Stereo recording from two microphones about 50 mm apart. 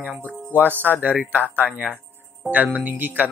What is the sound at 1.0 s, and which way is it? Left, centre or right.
Speech, right.